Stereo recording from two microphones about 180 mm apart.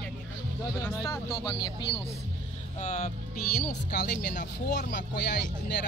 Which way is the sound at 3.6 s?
65° left (ahead or behind).